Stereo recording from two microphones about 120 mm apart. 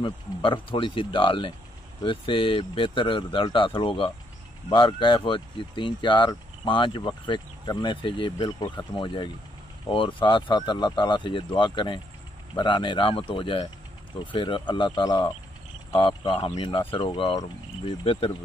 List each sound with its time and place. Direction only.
0.0 s speech: 45° left (ahead or behind)
15.9 s speech: 45° left (ahead or behind)